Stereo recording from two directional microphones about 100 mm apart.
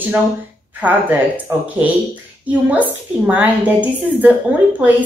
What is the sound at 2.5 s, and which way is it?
A woman's voice, 15° right (ahead or behind).